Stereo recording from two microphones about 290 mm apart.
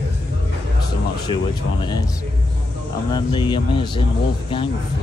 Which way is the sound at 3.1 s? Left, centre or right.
Centre.